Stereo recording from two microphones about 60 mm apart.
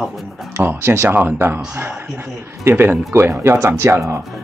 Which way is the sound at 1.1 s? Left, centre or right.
Right.